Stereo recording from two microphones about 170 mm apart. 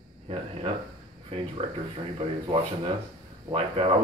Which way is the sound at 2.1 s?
35° right (ahead or behind).